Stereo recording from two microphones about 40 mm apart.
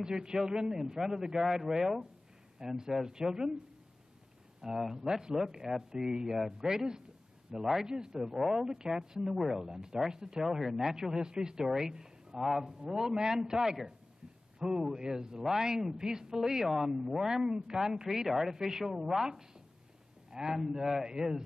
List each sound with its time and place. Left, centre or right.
0.0 s speech: centre
4.6 s speech: centre
20.2 s a sound: centre
20.5 s speech: centre